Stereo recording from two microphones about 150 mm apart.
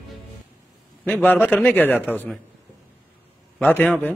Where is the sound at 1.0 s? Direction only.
10° left (ahead or behind).